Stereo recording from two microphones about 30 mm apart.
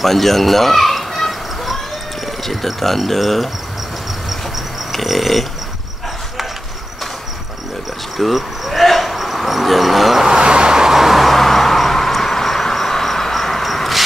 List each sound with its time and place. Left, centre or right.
0.0 s fowl: centre
2.6 s speech: centre
3.0 s a sound: centre
4.9 s a sound: centre
8.2 s cricket: centre
9.1 s insect: centre
10.2 s vehicle: right
10.9 s a sound: centre
11.1 s insect: centre